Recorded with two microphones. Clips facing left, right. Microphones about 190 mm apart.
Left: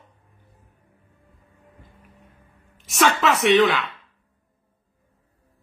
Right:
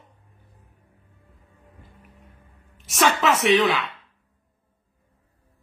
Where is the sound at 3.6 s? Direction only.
Centre (ahead or behind).